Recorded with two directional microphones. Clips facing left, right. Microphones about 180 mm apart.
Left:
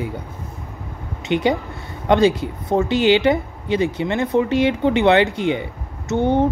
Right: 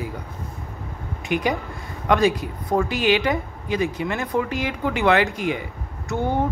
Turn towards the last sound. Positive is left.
turn(degrees=20)  # may be behind; listen again after turning